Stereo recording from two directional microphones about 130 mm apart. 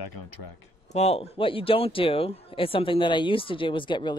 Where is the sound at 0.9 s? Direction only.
55° left (ahead or behind).